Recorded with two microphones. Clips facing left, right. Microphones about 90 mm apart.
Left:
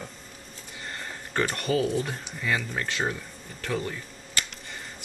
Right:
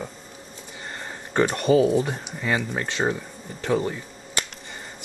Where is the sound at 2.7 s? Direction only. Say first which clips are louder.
Right 4 dB; 25° right (ahead or behind).